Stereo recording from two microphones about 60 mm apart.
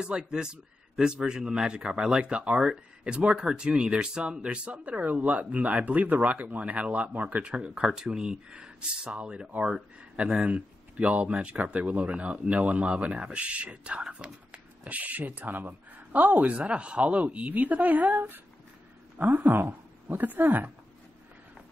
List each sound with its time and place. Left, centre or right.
0.0 s speech: centre; by 20.7 s right